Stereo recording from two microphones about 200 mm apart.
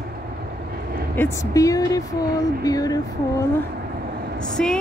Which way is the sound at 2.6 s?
20° left (ahead or behind).